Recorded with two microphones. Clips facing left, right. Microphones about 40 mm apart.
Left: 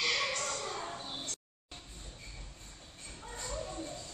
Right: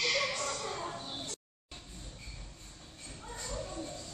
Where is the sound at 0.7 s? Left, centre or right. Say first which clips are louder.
Right 1 dB; centre.